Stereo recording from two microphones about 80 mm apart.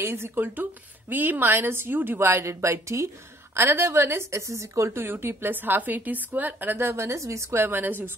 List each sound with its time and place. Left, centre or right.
0.0 s a woman's voice: right